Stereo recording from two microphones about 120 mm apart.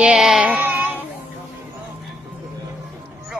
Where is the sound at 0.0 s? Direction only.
5° right (ahead or behind).